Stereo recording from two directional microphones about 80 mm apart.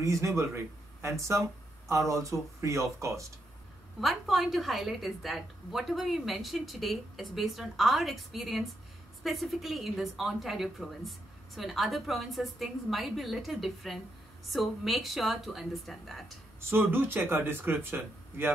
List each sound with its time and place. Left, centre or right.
0.0 s speech: right
1.9 s speech: right
4.0 s a woman's voice: centre
16.7 s speech: right